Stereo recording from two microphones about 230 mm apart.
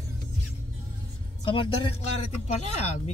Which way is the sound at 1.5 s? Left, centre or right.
Left.